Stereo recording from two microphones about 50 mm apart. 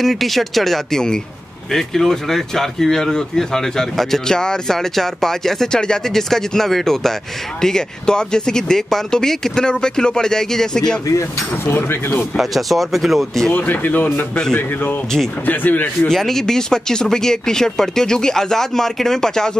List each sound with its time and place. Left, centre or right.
0.0 s speech: centre
11.6 s speech: left
12.4 s speech: centre
13.5 s speech: left
14.3 s a man's voice: centre
15.4 s speech: left
16.1 s speech: centre